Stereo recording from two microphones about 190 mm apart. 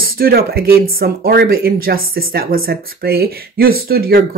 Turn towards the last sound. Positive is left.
turn(degrees=-55)  # may be behind; listen again after turning